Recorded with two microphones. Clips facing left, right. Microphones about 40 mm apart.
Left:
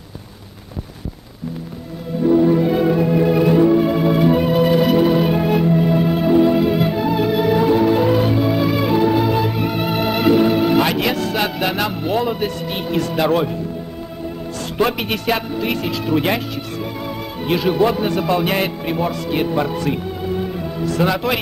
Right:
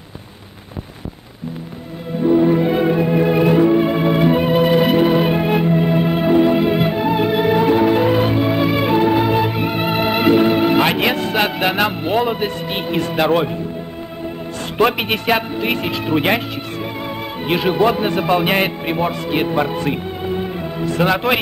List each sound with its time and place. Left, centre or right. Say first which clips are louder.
2.2 s music: even; right
14.8 s a man's voice: right 3 dB; right